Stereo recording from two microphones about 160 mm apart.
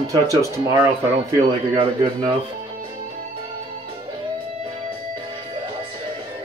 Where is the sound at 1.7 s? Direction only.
30° right (ahead or behind).